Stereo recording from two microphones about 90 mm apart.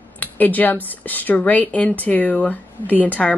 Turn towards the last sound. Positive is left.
turn(degrees=15)  # may be behind; listen again after turning